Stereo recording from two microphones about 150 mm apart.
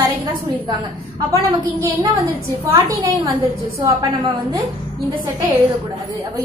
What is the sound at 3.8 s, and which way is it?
Speech, 30° right (ahead or behind).